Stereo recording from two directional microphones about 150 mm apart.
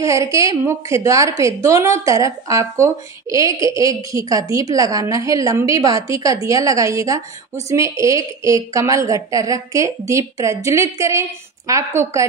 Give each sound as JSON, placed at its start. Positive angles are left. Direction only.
{"t": 0.0, "sound": "a woman's voice", "side_deg": -20}